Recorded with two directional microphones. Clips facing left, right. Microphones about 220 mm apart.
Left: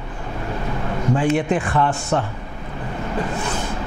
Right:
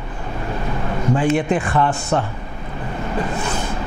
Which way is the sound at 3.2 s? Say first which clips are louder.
Right 1 dB; 20° right (ahead or behind).